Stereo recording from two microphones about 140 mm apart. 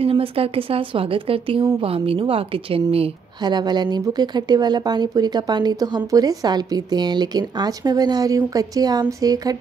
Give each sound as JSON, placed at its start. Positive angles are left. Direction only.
{"t": 0.0, "sound": "a woman's voice", "side_deg": -40}